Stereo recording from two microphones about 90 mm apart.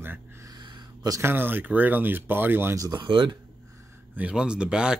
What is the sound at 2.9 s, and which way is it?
Speech, 65° right (ahead or behind).